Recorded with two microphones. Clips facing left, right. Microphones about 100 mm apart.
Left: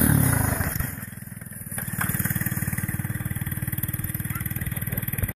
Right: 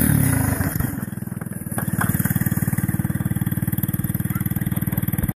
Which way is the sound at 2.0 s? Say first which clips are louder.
Right 5 dB; 15° right (ahead or behind).